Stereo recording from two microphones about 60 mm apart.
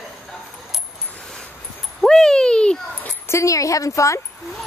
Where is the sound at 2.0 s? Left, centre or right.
Centre.